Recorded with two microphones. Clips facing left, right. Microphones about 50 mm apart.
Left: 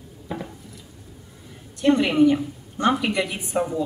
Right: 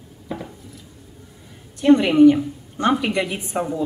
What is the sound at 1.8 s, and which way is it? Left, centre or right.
A woman's voice, centre.